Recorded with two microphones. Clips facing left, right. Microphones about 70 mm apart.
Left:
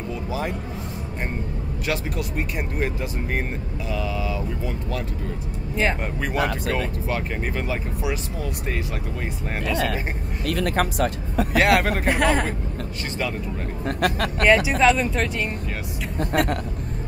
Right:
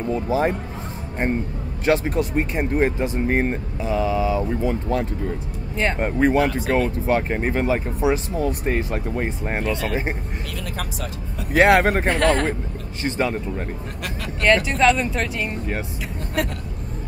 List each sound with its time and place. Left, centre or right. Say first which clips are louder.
0.1 s speech: right 8 dB; right
1.9 s speech: right 8 dB; right
10.5 s speech: left 11 dB; left
11.5 s speech: right 5 dB; right
12.1 s a man's voice: left 2 dB; centre
13.0 s speech: right 6 dB; right
14.4 s speech: even; centre
16.2 s speech: left 4 dB; left